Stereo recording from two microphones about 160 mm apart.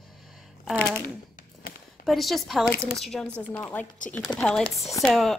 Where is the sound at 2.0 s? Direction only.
Centre (ahead or behind).